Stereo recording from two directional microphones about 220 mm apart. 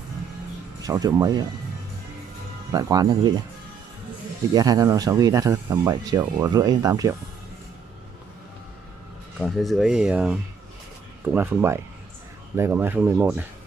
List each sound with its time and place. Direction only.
0.8 s speech: 15° right (ahead or behind)
2.7 s speech: 15° right (ahead or behind)
4.6 s speech: 15° right (ahead or behind)
9.4 s speech: centre (ahead or behind)